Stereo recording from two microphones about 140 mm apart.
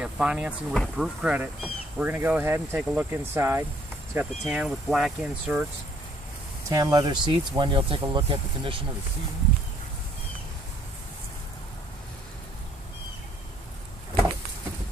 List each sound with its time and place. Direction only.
0.0 s speech: 5° right (ahead or behind)
6.7 s speech: 25° right (ahead or behind)